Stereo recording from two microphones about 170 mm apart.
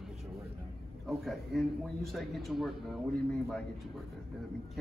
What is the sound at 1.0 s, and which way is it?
A man's voice, centre (ahead or behind).